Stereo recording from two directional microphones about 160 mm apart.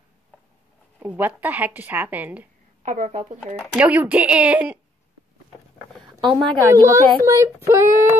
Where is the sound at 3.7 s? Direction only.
10° right (ahead or behind).